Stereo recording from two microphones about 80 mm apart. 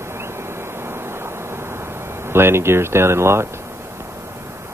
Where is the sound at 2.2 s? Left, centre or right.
Right.